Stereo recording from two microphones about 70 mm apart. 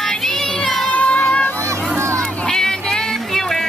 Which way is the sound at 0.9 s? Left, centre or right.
Centre.